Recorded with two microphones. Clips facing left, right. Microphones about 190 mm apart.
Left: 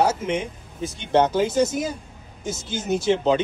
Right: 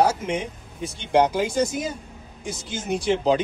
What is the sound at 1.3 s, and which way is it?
Speech, 25° left (ahead or behind).